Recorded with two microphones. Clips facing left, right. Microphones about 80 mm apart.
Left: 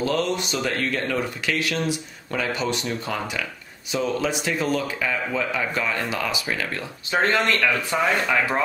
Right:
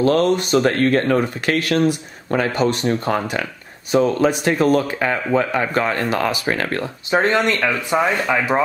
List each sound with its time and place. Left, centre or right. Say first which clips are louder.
0.0 s speech: right 8 dB; right
7.1 s speech: right 4 dB; right